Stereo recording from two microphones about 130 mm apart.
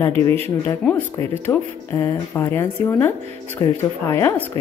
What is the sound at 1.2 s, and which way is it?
Speech, 20° left (ahead or behind).